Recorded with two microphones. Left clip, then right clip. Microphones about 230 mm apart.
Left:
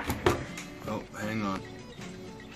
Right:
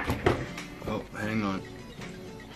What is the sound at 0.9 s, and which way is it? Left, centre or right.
Music, centre.